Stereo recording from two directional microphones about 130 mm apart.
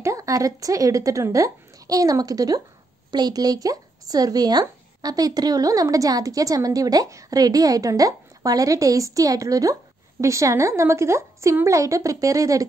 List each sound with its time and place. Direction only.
0.0 s speech: 25° right (ahead or behind)